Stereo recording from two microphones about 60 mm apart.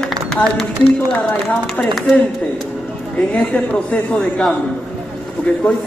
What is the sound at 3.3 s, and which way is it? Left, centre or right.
A man's voice, left.